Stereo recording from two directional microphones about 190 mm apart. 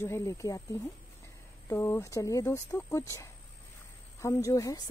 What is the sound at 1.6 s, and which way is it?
A woman's voice, 10° left (ahead or behind).